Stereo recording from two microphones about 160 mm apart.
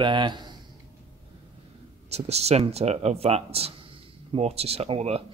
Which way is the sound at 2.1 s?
40° right (ahead or behind).